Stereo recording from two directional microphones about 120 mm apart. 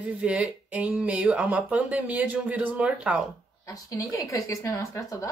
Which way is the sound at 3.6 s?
25° left (ahead or behind).